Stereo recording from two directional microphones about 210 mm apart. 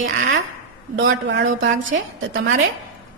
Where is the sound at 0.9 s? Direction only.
60° right (ahead or behind).